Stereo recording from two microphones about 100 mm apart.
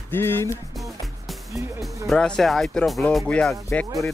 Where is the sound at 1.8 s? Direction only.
5° left (ahead or behind).